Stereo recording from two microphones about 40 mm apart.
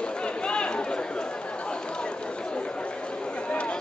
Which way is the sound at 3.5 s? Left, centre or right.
Left.